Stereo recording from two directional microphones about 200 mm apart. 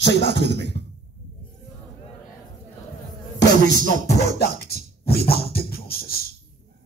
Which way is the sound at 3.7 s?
40° right (ahead or behind).